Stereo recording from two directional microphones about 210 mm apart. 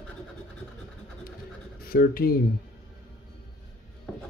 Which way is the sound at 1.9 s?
45° left (ahead or behind).